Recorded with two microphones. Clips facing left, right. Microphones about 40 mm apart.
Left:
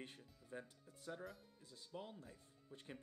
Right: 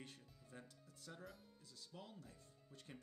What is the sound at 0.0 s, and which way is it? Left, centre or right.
Speech, left.